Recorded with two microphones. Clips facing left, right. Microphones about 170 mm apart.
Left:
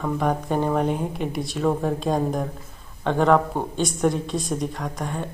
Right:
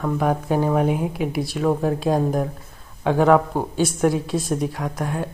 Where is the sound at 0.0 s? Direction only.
5° right (ahead or behind).